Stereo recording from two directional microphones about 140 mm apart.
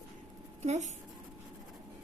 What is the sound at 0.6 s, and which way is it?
Speech, 55° right (ahead or behind).